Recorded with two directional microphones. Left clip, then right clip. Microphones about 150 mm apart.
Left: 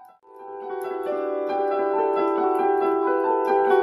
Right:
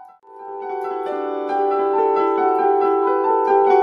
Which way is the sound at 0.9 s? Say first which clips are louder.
Even; 35° right (ahead or behind).